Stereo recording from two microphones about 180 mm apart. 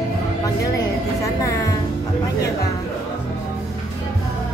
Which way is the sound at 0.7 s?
20° left (ahead or behind).